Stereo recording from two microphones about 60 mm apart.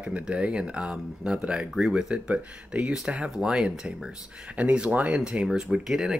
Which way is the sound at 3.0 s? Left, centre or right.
Centre.